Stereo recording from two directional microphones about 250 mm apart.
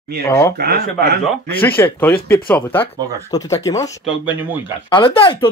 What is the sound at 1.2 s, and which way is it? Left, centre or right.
Speech, centre.